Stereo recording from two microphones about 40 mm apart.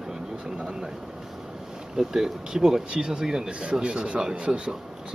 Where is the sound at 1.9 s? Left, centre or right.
Centre.